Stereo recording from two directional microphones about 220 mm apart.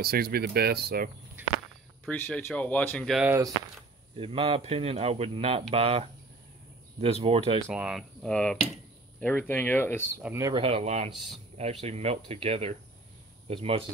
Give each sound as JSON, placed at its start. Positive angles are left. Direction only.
{"t": 0.0, "sound": "speech", "side_deg": -45}
{"t": 2.0, "sound": "speech", "side_deg": 5}
{"t": 4.2, "sound": "speech", "side_deg": -25}
{"t": 7.6, "sound": "speech", "side_deg": -5}
{"t": 10.2, "sound": "speech", "side_deg": -10}
{"t": 10.5, "sound": "speech", "side_deg": -25}